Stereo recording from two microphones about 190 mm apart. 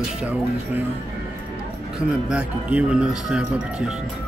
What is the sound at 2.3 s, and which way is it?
Speech, 5° right (ahead or behind).